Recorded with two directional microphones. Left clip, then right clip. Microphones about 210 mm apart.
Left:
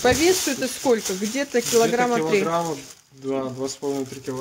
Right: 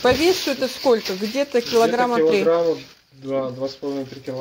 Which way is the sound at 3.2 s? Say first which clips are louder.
Right 2 dB; 55° left (ahead or behind).